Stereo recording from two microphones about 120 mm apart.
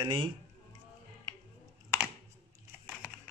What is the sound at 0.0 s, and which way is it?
Speech, 40° right (ahead or behind).